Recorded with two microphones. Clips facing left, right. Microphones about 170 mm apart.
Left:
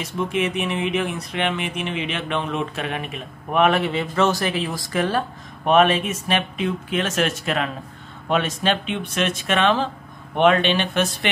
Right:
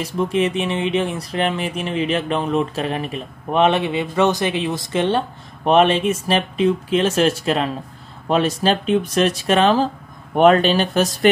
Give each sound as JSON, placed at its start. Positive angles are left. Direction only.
{"t": 0.3, "sound": "speech", "side_deg": -30}
{"t": 3.5, "sound": "speech", "side_deg": -25}